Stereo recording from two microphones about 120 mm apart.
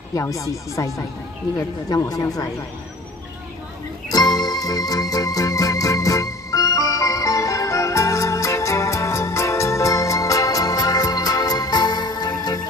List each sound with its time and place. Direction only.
0.1 s speech: 25° left (ahead or behind)
4.1 s music: 35° left (ahead or behind)